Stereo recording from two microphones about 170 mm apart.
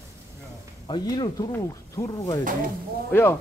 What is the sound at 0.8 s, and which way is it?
Speech, 25° left (ahead or behind).